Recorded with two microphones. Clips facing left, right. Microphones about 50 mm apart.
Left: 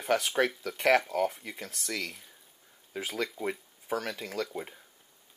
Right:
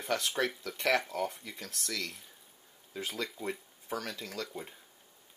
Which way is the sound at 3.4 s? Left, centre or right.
Centre.